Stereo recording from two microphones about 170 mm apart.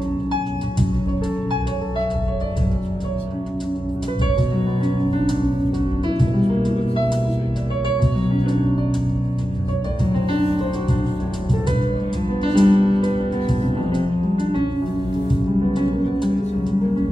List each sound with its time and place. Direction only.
10.3 s music: 30° right (ahead or behind)
12.4 s music: 30° right (ahead or behind)